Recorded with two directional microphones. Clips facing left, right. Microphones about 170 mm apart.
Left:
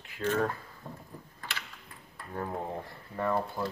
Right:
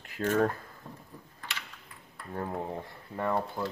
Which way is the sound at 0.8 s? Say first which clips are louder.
Left 3 dB; 20° left (ahead or behind).